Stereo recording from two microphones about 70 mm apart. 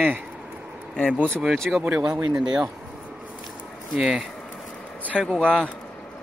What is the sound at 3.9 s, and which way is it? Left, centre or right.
Speech, centre.